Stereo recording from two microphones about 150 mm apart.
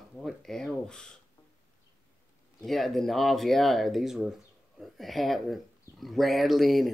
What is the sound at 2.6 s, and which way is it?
Speech, centre (ahead or behind).